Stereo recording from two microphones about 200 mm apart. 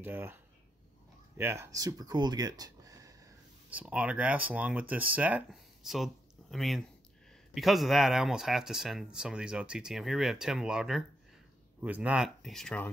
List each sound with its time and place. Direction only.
0.0 s speech: 10° right (ahead or behind)
1.4 s speech: 15° right (ahead or behind)
3.7 s speech: 5° right (ahead or behind)